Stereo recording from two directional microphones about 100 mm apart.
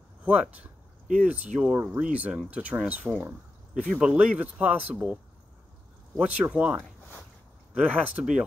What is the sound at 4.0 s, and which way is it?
Speech, 15° right (ahead or behind).